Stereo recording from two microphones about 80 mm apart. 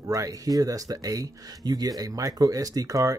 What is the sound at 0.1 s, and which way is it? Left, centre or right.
Speech, right.